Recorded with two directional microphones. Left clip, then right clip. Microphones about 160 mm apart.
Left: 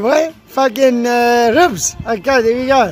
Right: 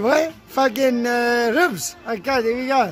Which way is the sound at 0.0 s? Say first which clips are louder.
Left 5 dB; 15° left (ahead or behind).